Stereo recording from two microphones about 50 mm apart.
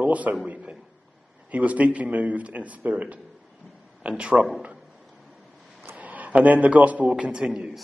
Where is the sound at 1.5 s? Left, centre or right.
Right.